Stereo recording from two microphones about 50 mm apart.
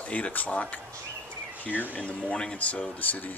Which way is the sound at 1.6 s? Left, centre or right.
Left.